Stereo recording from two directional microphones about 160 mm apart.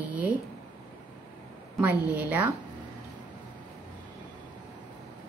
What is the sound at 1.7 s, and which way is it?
Speech, 10° right (ahead or behind).